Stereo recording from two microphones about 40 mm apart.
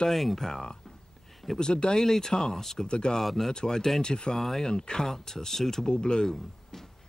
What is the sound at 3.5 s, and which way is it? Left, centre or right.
Speech, centre.